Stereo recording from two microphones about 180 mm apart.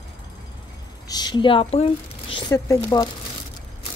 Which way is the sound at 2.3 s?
20° left (ahead or behind).